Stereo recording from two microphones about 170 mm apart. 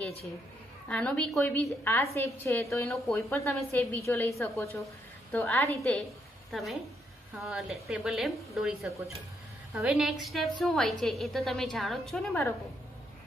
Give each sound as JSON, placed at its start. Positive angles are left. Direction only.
{"t": 0.8, "sound": "a woman's voice", "side_deg": 5}